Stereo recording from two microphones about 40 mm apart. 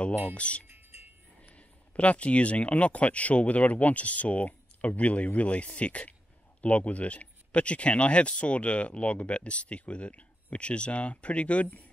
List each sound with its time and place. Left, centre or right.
0.3 s speech: left
0.7 s music: right
1.5 s speech: left